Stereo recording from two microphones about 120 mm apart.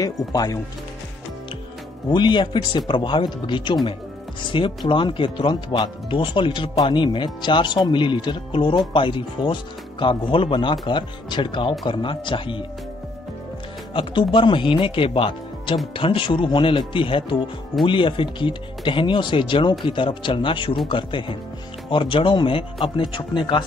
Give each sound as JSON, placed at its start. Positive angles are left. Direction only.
{"t": 0.0, "sound": "speech", "side_deg": 30}
{"t": 2.0, "sound": "speech", "side_deg": 40}
{"t": 13.9, "sound": "speech", "side_deg": 45}